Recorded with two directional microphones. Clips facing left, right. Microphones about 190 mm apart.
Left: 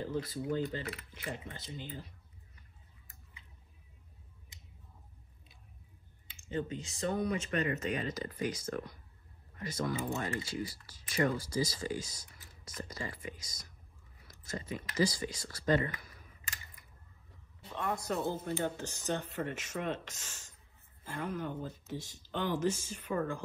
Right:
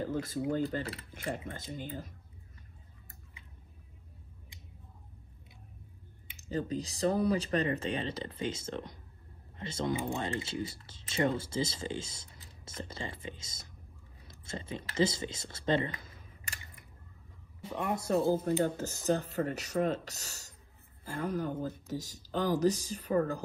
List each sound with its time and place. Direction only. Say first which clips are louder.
0.0 s a sound: right 2 dB; 45° right (ahead or behind)
0.7 s speech: right 4 dB; 50° right (ahead or behind)
6.3 s speech: right 3 dB; 40° right (ahead or behind)
17.7 s speech: right 2 dB; 15° right (ahead or behind)
18.0 s speech: right 7 dB; 35° right (ahead or behind)